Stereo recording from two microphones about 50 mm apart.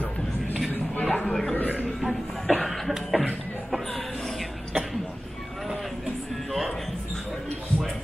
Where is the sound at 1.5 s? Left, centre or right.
Left.